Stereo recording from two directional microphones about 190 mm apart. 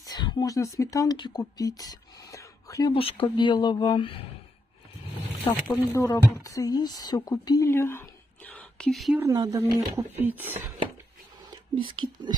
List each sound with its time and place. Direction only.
0.0 s speech: 20° left (ahead or behind)
2.9 s speech: 30° left (ahead or behind)
5.4 s speech: 20° left (ahead or behind); by 9.2 s centre (ahead or behind)
9.2 s speech: 20° right (ahead or behind)
11.5 s speech: 25° right (ahead or behind)